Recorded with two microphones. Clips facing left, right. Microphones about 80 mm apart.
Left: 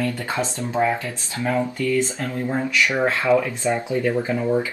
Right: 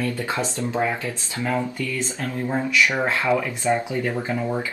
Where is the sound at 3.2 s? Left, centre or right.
Right.